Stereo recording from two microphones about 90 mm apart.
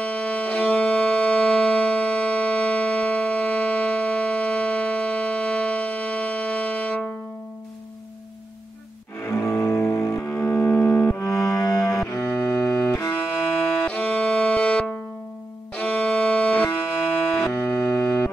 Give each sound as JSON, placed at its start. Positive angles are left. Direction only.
{"t": 0.0, "sound": "music", "side_deg": 15}
{"t": 9.2, "sound": "double bass", "side_deg": 30}
{"t": 12.1, "sound": "cello", "side_deg": 35}
{"t": 13.5, "sound": "music", "side_deg": 15}
{"t": 17.7, "sound": "music", "side_deg": 40}